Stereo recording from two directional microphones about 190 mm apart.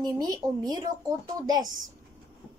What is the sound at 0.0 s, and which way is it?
A woman's voice, 20° right (ahead or behind).